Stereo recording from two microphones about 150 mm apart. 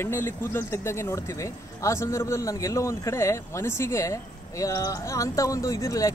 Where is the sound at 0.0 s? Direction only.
15° left (ahead or behind).